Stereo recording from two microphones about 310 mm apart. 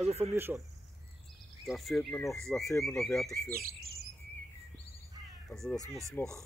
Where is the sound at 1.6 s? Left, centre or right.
Centre.